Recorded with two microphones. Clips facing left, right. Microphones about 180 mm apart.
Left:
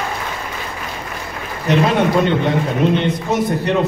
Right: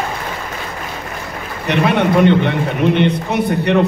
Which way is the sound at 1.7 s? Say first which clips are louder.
Even; 65° right (ahead or behind).